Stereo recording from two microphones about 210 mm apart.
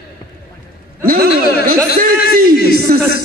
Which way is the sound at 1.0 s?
45° right (ahead or behind).